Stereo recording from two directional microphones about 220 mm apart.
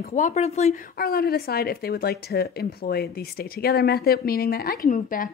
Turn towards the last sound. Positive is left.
turn(degrees=40)  # may be behind; listen again after turning